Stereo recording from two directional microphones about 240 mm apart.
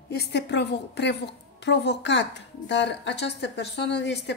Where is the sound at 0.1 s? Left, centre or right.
Left.